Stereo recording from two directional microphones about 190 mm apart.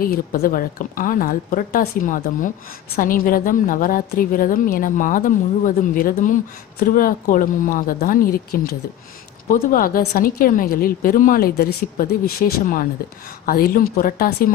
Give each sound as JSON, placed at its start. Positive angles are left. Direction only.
{"t": 0.0, "sound": "a woman's voice", "side_deg": 50}